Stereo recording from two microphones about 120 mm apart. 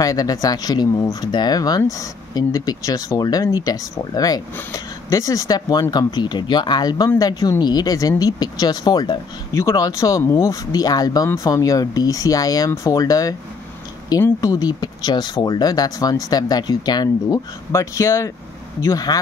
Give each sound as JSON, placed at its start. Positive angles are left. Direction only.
{"t": 0.0, "sound": "speech", "side_deg": 30}
{"t": 9.5, "sound": "speech", "side_deg": 25}